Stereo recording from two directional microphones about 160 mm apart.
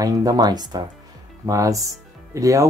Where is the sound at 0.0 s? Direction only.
25° right (ahead or behind).